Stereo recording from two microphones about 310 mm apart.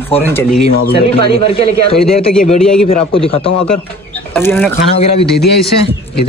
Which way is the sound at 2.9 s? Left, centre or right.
Centre.